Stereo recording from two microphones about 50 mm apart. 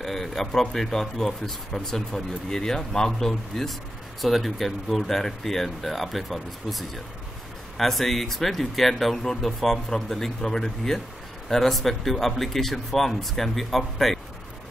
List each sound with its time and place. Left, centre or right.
0.0 s speech: centre